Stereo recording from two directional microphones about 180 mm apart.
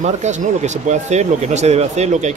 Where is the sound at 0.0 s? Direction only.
40° right (ahead or behind).